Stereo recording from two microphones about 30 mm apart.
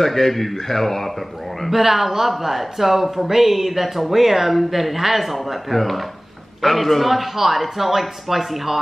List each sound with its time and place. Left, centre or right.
0.0 s speech: centre
1.7 s speech: centre